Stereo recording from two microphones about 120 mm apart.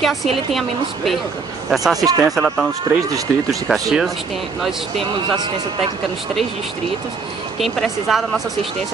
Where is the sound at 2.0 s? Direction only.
30° right (ahead or behind).